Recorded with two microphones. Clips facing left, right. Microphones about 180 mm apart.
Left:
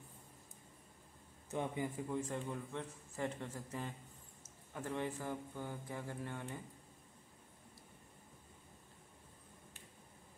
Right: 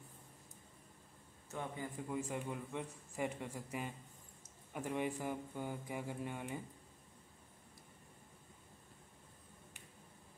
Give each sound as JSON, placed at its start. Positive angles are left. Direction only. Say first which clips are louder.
{"t": 1.5, "sound": "a man's voice", "louder": "left 5 dB", "side_deg": 20}
{"t": 2.0, "sound": "a man's voice", "louder": "left 1 dB", "side_deg": -5}